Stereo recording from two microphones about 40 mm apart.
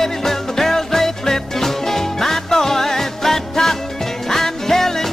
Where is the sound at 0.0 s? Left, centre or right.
Centre.